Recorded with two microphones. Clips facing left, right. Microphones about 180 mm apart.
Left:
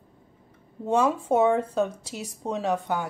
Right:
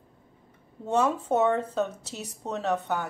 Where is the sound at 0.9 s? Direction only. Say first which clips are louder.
Left 2 dB; 10° left (ahead or behind).